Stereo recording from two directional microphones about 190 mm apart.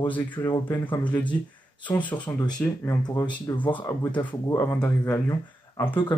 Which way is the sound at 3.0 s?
25° left (ahead or behind).